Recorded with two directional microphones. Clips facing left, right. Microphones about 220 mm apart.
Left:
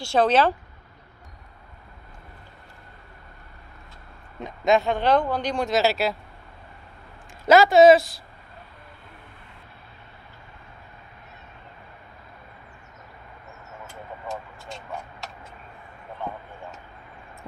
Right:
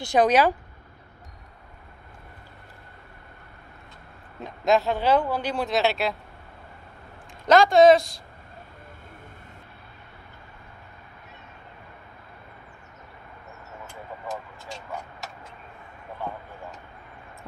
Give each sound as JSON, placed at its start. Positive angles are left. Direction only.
{"t": 0.0, "sound": "speech", "side_deg": -15}
{"t": 4.4, "sound": "speech", "side_deg": 0}
{"t": 7.4, "sound": "speech", "side_deg": 5}